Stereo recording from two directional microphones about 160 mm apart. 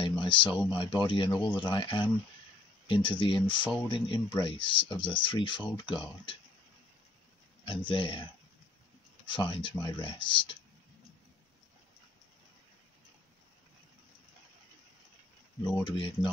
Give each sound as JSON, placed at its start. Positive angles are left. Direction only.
{"t": 0.0, "sound": "a sound", "side_deg": 30}
{"t": 0.7, "sound": "speech", "side_deg": 30}
{"t": 7.6, "sound": "speech", "side_deg": 30}
{"t": 9.2, "sound": "speech", "side_deg": 30}
{"t": 15.8, "sound": "speech", "side_deg": 30}